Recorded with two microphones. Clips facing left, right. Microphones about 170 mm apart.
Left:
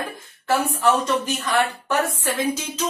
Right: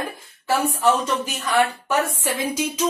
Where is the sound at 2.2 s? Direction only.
10° right (ahead or behind).